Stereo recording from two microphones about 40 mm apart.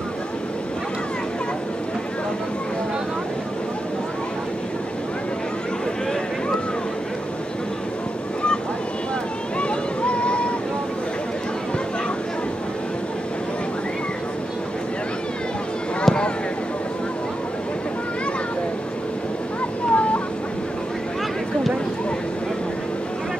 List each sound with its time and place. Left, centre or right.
9.6 s waves: left
16.1 s a sound: centre
19.9 s vehicle: left